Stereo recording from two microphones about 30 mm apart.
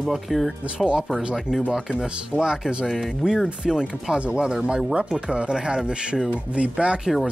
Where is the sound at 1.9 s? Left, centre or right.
Right.